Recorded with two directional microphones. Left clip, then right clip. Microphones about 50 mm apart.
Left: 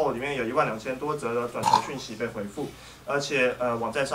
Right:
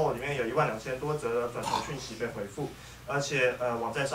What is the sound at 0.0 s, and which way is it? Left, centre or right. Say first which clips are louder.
Speech: left 3 dB; centre.